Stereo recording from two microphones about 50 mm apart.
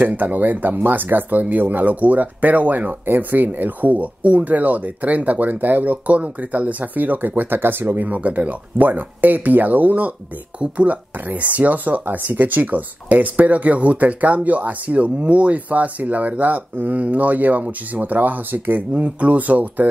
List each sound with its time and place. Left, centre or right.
0.0 s speech: right
10.6 s speech: right
11.1 s speech: right